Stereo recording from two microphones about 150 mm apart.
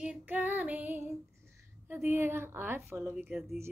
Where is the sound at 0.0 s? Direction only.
10° right (ahead or behind).